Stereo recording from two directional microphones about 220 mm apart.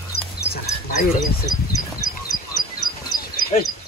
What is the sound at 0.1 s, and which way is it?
Dog, 45° left (ahead or behind).